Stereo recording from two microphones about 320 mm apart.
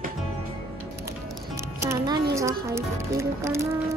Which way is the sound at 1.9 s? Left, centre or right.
Centre.